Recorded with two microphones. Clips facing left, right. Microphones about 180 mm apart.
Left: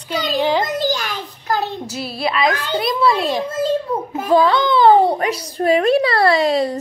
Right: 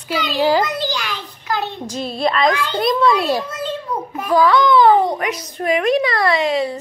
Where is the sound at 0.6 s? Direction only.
45° left (ahead or behind).